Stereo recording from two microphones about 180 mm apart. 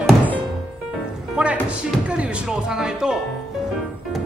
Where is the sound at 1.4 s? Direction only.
5° right (ahead or behind).